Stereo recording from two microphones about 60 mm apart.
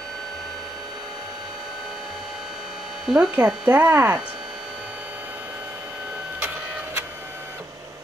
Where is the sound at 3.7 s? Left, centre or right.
Right.